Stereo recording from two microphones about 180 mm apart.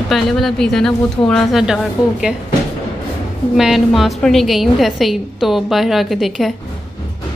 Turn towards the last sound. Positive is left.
turn(degrees=0)  # may be behind; listen again after turning